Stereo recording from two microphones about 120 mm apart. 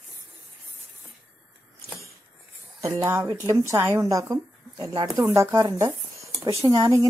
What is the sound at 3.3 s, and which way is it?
Speech, 25° right (ahead or behind).